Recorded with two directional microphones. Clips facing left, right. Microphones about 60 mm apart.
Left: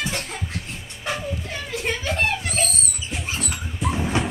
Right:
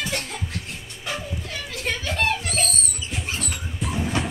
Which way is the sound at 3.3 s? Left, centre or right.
Centre.